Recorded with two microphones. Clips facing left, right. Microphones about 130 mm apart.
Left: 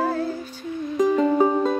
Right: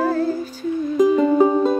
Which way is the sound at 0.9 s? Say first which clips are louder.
Right 3 dB; 5° right (ahead or behind).